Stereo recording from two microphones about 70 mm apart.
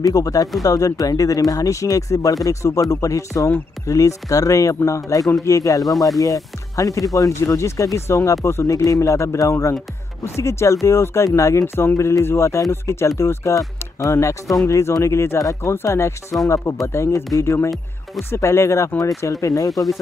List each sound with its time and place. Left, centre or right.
0.0 s speech: left
5.9 s speech: centre
6.1 s speech: left
15.3 s speech: left
15.7 s speech: left
19.4 s speech: left
19.7 s speech: centre